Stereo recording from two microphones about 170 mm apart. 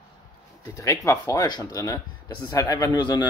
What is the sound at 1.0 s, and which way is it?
Speech, 20° left (ahead or behind).